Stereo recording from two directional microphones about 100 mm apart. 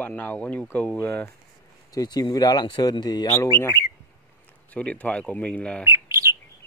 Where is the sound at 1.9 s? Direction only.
40° left (ahead or behind).